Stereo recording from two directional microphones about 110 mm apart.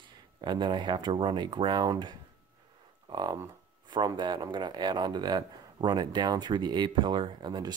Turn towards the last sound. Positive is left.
turn(degrees=-40)  # may be behind; listen again after turning